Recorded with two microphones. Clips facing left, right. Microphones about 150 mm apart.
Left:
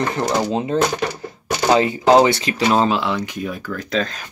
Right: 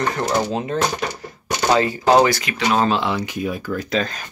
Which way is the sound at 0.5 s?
30° left (ahead or behind).